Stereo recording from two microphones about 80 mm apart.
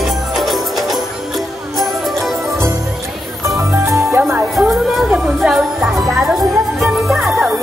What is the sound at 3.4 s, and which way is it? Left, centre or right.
Music, right.